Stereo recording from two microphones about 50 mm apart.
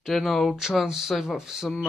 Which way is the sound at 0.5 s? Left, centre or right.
Centre.